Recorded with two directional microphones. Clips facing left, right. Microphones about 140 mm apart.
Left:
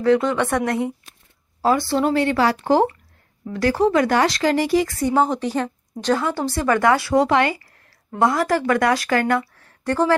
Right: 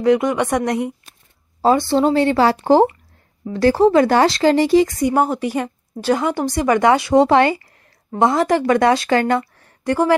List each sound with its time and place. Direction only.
0.0 s a woman's voice: 15° right (ahead or behind)
1.6 s speech: 25° right (ahead or behind)
7.2 s speech: 30° right (ahead or behind)
7.6 s speech: 20° right (ahead or behind)
9.6 s a sound: 15° right (ahead or behind)